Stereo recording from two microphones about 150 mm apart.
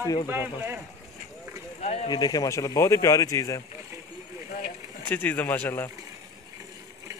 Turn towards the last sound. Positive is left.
turn(degrees=15)  # may be behind; listen again after turning